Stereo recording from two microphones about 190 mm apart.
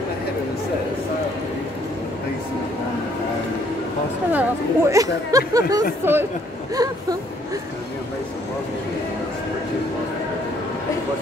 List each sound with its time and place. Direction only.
4.3 s speech: 10° right (ahead or behind)